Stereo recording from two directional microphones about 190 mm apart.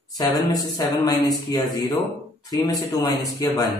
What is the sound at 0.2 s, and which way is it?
Speech, 20° left (ahead or behind).